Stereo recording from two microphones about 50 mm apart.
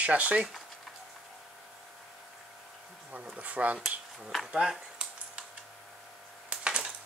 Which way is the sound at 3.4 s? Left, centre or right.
Right.